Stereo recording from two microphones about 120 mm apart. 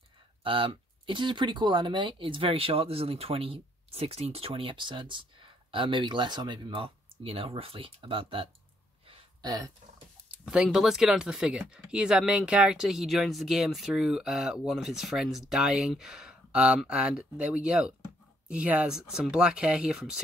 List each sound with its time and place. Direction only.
0.4 s speech: 45° right (ahead or behind)
9.4 s speech: 30° right (ahead or behind)
10.3 s speech: 5° right (ahead or behind)